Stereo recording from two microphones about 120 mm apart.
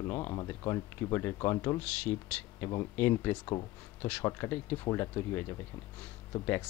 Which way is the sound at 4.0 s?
15° left (ahead or behind).